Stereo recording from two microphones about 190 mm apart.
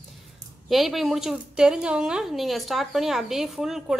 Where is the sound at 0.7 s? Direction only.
Centre (ahead or behind).